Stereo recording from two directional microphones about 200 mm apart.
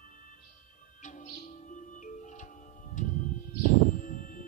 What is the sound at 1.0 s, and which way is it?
Music, 40° left (ahead or behind).